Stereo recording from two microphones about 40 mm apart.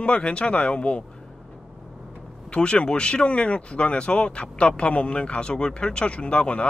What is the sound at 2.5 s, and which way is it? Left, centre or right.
Speech, left.